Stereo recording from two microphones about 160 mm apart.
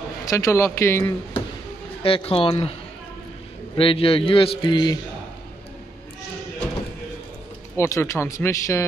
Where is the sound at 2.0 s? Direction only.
35° left (ahead or behind).